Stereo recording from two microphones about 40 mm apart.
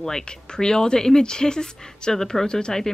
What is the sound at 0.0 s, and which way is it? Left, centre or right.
A woman's voice, centre.